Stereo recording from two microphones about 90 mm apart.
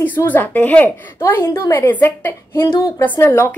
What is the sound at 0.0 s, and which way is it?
Speech, 20° left (ahead or behind).